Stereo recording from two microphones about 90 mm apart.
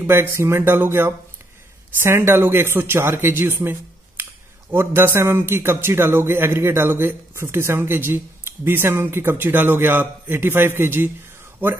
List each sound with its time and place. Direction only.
0.0 s speech: 25° right (ahead or behind)